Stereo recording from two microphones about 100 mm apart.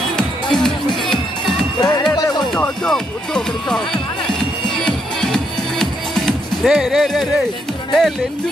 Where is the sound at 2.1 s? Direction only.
40° left (ahead or behind).